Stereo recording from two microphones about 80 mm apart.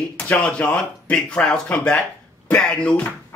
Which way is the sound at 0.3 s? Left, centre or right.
Centre.